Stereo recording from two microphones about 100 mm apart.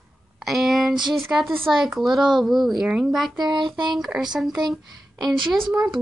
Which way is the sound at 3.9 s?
5° right (ahead or behind).